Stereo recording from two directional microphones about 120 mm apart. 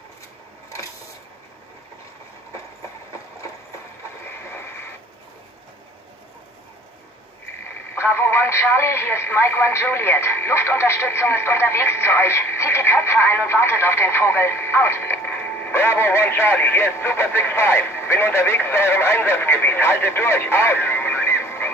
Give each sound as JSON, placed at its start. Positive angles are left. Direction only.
{"t": 7.9, "sound": "speech", "side_deg": 20}